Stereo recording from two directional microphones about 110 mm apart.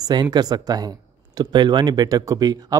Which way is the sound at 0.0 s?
40° right (ahead or behind).